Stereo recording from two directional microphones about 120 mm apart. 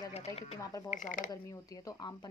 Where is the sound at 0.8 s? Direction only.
90° left.